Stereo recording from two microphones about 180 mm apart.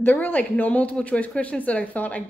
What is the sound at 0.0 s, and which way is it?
A woman's voice, 10° left (ahead or behind).